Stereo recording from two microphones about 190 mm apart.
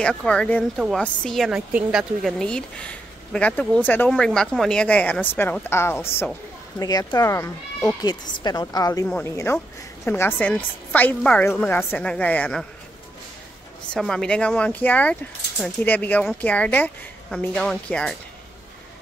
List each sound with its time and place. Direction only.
0.0 s a woman's voice: 5° left (ahead or behind)
13.9 s a woman's voice: 5° left (ahead or behind)